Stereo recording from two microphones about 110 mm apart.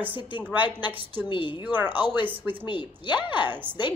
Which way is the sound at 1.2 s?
45° left (ahead or behind).